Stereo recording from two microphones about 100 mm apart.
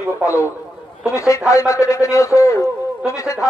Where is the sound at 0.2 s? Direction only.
30° left (ahead or behind).